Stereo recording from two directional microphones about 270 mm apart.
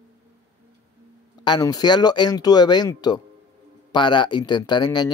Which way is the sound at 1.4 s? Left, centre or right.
Centre.